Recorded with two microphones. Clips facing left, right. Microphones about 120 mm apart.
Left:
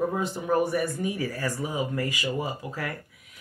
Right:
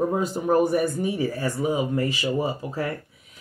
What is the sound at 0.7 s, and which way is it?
Speech, 25° right (ahead or behind).